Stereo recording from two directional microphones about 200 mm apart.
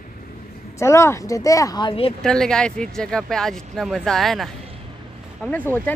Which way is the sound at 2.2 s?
5° left (ahead or behind).